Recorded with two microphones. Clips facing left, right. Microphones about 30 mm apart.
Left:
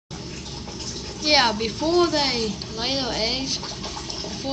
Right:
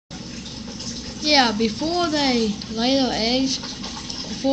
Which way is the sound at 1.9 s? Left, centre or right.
Right.